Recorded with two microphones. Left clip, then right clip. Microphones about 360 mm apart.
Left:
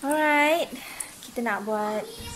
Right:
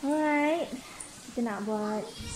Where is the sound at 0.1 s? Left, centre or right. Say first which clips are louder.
Left 6 dB; left.